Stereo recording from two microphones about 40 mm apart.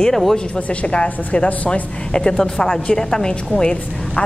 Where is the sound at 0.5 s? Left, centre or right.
Left.